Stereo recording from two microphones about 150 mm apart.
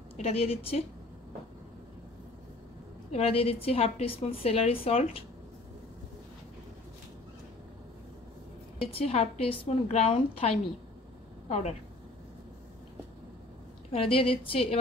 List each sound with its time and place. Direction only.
0.2 s a woman's voice: 45° left (ahead or behind)
3.1 s a woman's voice: 40° left (ahead or behind)
8.7 s a woman's voice: 40° left (ahead or behind)
13.9 s a woman's voice: 40° left (ahead or behind)